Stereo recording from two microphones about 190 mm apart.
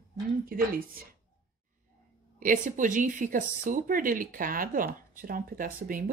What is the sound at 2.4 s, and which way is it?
Speech, 45° right (ahead or behind).